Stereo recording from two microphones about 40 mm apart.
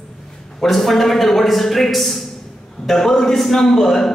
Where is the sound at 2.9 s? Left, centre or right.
Centre.